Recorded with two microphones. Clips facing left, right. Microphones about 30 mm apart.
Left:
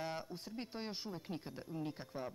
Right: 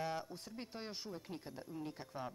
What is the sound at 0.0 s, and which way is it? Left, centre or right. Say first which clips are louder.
Speech: right 1 dB; centre.